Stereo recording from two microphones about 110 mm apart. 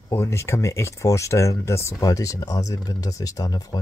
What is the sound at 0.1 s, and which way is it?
Speech, 25° left (ahead or behind).